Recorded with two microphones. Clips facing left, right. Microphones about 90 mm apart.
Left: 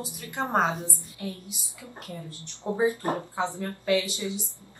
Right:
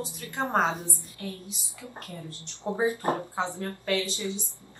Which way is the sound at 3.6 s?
20° left (ahead or behind).